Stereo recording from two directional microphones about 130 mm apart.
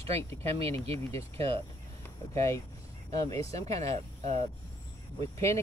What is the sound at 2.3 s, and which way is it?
Speech, 25° left (ahead or behind).